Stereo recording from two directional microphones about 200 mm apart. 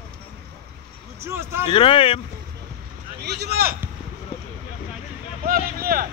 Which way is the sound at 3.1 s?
55° right (ahead or behind).